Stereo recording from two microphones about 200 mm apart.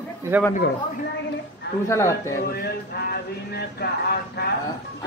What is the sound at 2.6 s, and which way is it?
Music, 55° left (ahead or behind).